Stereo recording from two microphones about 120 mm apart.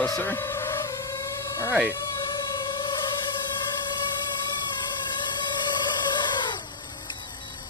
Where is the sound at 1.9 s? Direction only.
30° left (ahead or behind).